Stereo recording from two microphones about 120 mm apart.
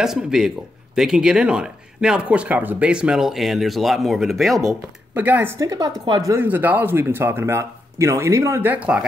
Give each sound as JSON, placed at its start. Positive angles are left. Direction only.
{"t": 0.0, "sound": "speech", "side_deg": -5}
{"t": 5.1, "sound": "speech", "side_deg": -15}
{"t": 6.3, "sound": "speech", "side_deg": -15}